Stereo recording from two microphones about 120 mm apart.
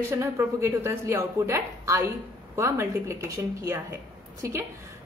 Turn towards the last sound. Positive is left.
turn(degrees=-25)  # may be behind; listen again after turning